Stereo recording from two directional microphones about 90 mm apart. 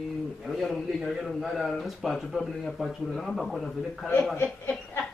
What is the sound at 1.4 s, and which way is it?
Speech, centre (ahead or behind).